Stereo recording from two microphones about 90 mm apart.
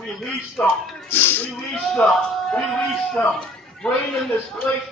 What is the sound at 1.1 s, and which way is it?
Speech, 20° left (ahead or behind).